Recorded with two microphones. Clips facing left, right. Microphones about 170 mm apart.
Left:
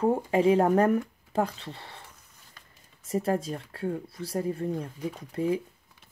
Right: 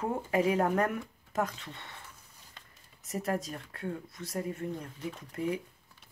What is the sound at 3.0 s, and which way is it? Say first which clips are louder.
Speech: left 6 dB; 30° left (ahead or behind).